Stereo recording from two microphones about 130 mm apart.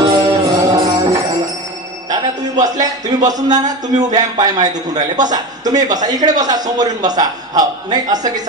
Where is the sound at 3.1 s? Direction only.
30° right (ahead or behind).